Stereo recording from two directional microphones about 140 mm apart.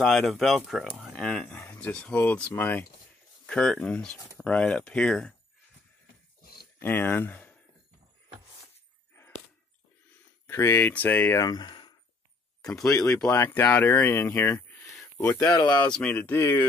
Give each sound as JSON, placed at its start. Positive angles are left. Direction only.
{"t": 0.0, "sound": "speech", "side_deg": 0}
{"t": 6.4, "sound": "a sound", "side_deg": 90}
{"t": 6.8, "sound": "speech", "side_deg": 15}
{"t": 10.4, "sound": "speech", "side_deg": 20}
{"t": 11.4, "sound": "speech", "side_deg": 30}
{"t": 12.8, "sound": "speech", "side_deg": 20}
{"t": 15.6, "sound": "speech", "side_deg": 10}